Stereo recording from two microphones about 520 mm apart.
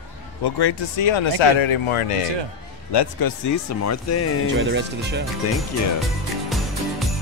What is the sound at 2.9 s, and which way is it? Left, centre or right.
Speech, left.